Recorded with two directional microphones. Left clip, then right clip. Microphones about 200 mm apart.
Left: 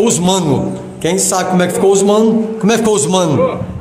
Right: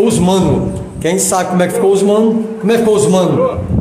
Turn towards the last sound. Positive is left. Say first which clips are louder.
# right 2 dB
turn(degrees=35)  # may be behind; listen again after turning